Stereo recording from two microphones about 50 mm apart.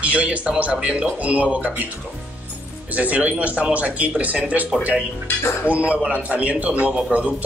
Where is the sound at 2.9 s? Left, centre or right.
Right.